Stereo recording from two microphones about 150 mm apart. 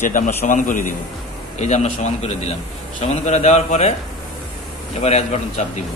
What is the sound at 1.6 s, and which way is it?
A man's voice, 50° left (ahead or behind).